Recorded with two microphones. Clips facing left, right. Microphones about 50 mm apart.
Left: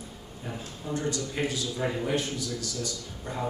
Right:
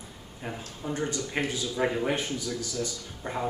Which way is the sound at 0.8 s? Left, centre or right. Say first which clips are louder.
Even; right.